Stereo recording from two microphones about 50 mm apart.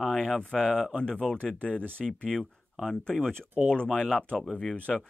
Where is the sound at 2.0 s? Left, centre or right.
Centre.